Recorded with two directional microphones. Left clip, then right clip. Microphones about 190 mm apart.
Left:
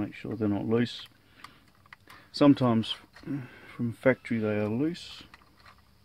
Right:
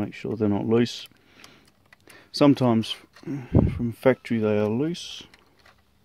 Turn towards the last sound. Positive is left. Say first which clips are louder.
# right 3 dB
turn(degrees=-45)  # may be behind; listen again after turning